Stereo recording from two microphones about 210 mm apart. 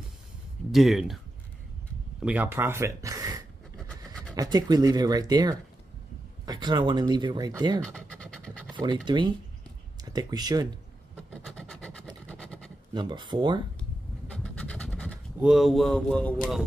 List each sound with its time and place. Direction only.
0.7 s speech: centre (ahead or behind)
2.2 s speech: 10° right (ahead or behind)
3.7 s train: 5° left (ahead or behind)
4.4 s speech: 20° right (ahead or behind)
7.8 s pant: 5° left (ahead or behind)
8.7 s speech: 20° right (ahead or behind)
11.4 s vehicle: 5° left (ahead or behind)
12.9 s speech: 20° right (ahead or behind)
14.3 s a sound: 5° left (ahead or behind)